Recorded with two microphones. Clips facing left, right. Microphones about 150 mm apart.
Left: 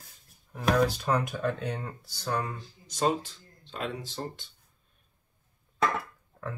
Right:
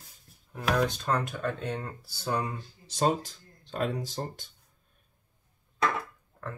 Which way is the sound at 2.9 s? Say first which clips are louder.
Right 1 dB; 35° right (ahead or behind).